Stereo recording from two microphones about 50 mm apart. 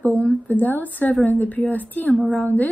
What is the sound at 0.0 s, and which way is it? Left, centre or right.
A woman's voice, left.